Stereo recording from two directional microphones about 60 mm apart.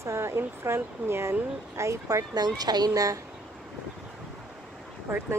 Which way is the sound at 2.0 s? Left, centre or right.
Right.